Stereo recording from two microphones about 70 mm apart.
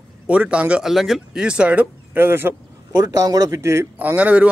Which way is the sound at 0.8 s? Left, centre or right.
Centre.